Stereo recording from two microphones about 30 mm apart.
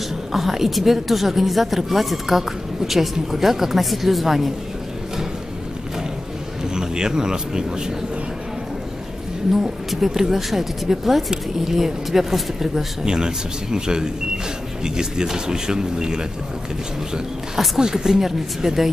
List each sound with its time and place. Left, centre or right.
0.3 s a woman's voice: centre
6.7 s speech: right
9.5 s speech: centre
13.0 s speech: right
17.7 s speech: right